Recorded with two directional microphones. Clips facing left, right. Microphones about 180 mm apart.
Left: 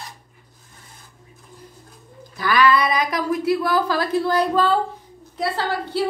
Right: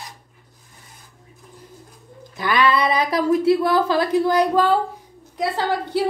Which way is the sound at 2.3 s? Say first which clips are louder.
Left 1 dB; 20° right (ahead or behind).